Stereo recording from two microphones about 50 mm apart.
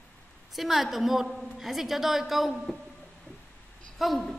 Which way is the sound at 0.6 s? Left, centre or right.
Centre.